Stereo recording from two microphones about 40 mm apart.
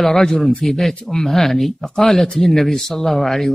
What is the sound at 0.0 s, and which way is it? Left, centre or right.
Speech, centre.